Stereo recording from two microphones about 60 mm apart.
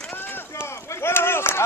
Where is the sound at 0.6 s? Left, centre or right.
Left.